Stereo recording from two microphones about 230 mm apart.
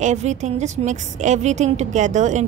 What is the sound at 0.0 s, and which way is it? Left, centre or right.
A woman's voice, right.